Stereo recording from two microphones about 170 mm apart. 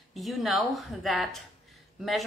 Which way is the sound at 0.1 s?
Centre (ahead or behind).